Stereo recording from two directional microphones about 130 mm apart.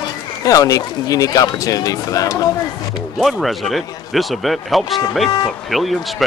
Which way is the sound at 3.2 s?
Centre (ahead or behind).